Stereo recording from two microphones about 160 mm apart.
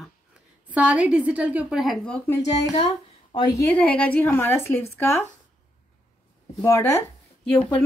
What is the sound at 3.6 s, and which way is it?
A woman's voice, 10° left (ahead or behind).